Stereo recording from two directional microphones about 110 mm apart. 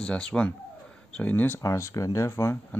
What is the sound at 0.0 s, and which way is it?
Speech, 10° left (ahead or behind).